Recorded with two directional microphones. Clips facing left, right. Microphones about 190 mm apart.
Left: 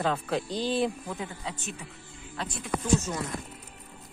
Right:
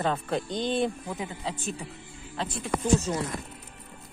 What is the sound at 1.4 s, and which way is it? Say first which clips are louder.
Speech: right 4 dB; 30° right (ahead or behind).